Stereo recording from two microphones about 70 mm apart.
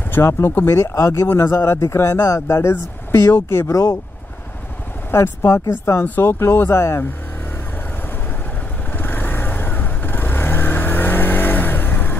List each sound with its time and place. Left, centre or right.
0.1 s speech: left
5.1 s speech: left
8.9 s vehicle: left